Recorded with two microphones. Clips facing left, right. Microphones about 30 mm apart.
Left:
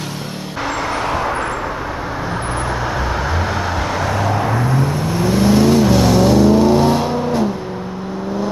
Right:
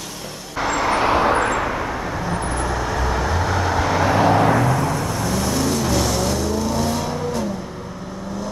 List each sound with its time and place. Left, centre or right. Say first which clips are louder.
0.7 s vehicle: right 2 dB; centre
2.8 s vehicle: left 2 dB; centre
4.9 s vehicle: left 5 dB; left